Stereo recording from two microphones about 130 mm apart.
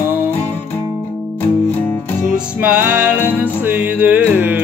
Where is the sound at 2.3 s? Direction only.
10° right (ahead or behind).